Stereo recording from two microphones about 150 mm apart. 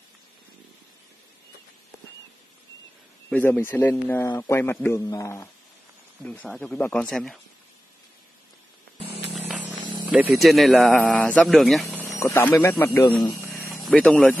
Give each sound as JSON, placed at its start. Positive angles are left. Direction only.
{"t": 3.3, "sound": "a man's voice", "side_deg": 10}
{"t": 6.2, "sound": "speech", "side_deg": 10}
{"t": 9.5, "sound": "a sound", "side_deg": -10}
{"t": 10.3, "sound": "speech", "side_deg": 0}
{"t": 12.2, "sound": "a man's voice", "side_deg": 15}
{"t": 13.5, "sound": "a sound", "side_deg": 0}